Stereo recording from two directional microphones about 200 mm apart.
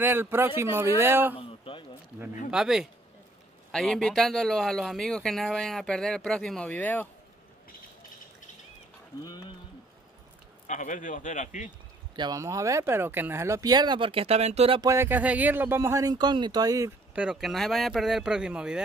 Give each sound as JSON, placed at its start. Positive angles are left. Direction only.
{"t": 0.0, "sound": "speech", "side_deg": -10}
{"t": 1.6, "sound": "a sound", "side_deg": 25}
{"t": 2.5, "sound": "speech", "side_deg": 0}
{"t": 9.2, "sound": "speech", "side_deg": 20}
{"t": 10.7, "sound": "a man's voice", "side_deg": 40}
{"t": 12.2, "sound": "speech", "side_deg": -20}
{"t": 14.8, "sound": "speech", "side_deg": -15}